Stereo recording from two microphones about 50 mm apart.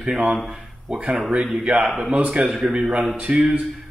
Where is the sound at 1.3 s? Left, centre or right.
Centre.